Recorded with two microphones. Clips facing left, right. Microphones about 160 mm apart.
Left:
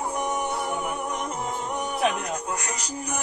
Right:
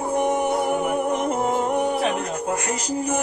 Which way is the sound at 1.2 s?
50° right (ahead or behind).